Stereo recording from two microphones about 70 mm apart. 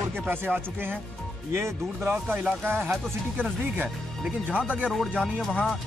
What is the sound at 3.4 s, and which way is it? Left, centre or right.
Speech, centre.